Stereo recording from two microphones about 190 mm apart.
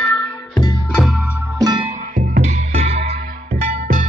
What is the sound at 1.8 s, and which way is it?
Music, 40° right (ahead or behind).